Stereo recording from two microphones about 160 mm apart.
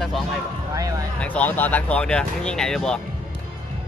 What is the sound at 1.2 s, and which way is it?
Speech, 10° left (ahead or behind).